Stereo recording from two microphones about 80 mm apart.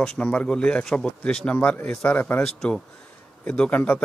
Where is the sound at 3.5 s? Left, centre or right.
Centre.